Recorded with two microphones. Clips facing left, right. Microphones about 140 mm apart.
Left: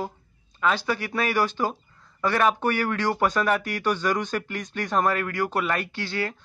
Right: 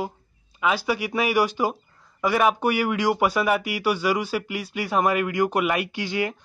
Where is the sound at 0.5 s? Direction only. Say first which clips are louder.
Right 1 dB; 10° right (ahead or behind).